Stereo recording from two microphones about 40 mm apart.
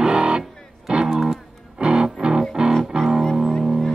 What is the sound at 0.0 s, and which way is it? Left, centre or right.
Music, right.